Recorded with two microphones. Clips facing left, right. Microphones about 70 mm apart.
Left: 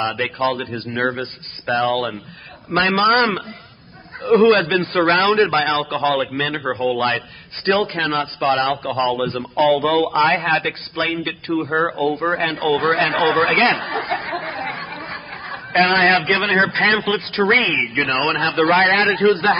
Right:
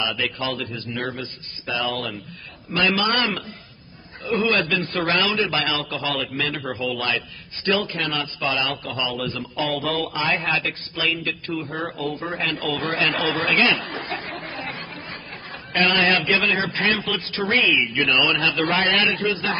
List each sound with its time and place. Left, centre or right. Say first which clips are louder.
0.0 s a man's voice: left 6 dB; left
9.7 s a man's voice: left 9 dB; left
10.1 s a man's voice: left 7 dB; left
13.6 s a man's voice: left 4 dB; left
13.8 s a man's voice: left 7 dB; left
14.5 s chatter: left 6 dB; left
15.9 s a man's voice: left 3 dB; left
17.2 s a man's voice: left 5 dB; left